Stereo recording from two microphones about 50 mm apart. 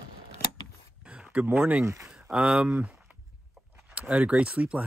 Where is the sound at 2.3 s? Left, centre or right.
Right.